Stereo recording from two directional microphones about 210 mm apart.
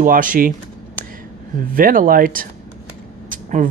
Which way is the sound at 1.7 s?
40° right (ahead or behind).